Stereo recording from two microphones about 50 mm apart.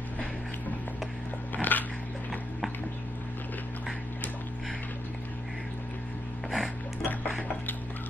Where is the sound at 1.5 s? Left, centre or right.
Left.